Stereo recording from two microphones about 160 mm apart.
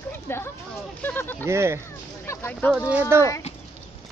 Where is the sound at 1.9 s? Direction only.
15° left (ahead or behind).